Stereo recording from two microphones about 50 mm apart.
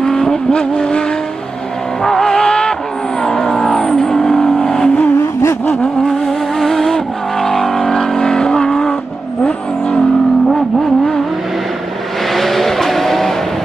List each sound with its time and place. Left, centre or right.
0.0 s vehicle: centre
2.0 s vehicle: centre
3.7 s vehicle: left; by 7.9 s centre
7.9 s vehicle: centre
12.4 s vehicle: centre